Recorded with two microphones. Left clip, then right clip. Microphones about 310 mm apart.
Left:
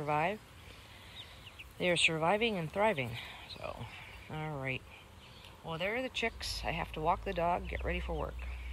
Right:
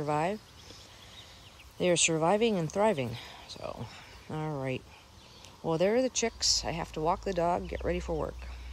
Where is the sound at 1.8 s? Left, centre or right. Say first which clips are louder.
Right 3 dB; centre.